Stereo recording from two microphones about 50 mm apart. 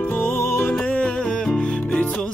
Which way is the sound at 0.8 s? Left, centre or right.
Left.